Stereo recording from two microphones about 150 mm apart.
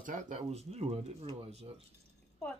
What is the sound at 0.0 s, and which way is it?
Speech, 60° right (ahead or behind).